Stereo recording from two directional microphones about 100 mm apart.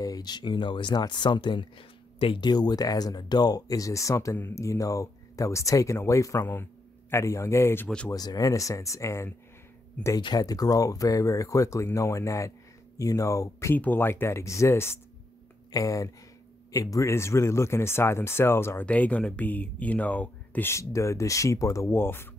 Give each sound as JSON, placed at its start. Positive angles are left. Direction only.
{"t": 0.0, "sound": "speech", "side_deg": 40}
{"t": 8.1, "sound": "speech", "side_deg": 40}
{"t": 10.2, "sound": "speech", "side_deg": 40}
{"t": 13.7, "sound": "speech", "side_deg": 20}
{"t": 20.7, "sound": "speech", "side_deg": 30}